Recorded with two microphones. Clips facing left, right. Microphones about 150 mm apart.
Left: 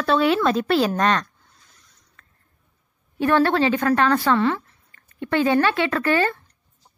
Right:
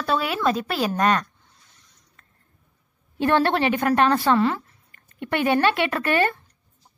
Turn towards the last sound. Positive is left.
turn(degrees=-20)  # may be behind; listen again after turning